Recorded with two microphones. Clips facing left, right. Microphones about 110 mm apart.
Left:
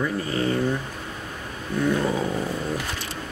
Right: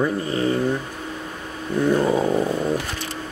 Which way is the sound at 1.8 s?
30° right (ahead or behind).